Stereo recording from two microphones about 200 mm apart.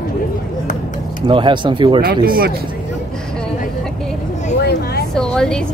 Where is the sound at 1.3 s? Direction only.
25° right (ahead or behind).